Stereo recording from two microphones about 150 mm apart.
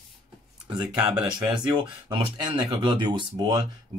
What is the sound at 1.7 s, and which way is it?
Speech, 30° right (ahead or behind).